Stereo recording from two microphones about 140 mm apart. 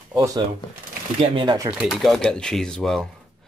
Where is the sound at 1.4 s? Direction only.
30° right (ahead or behind).